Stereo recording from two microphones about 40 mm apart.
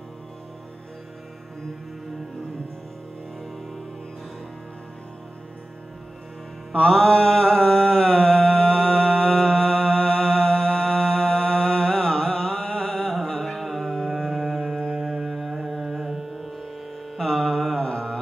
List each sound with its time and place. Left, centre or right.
6.9 s music: left
15.3 s carnatic music: centre
17.2 s mantra: centre